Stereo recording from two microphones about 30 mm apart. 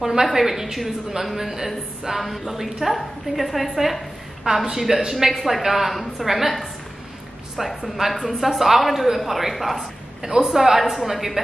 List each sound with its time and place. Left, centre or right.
0.0 s a woman's voice: centre
10.5 s speech: centre